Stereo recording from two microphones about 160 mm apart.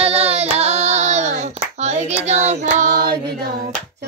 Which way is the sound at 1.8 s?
45° right (ahead or behind).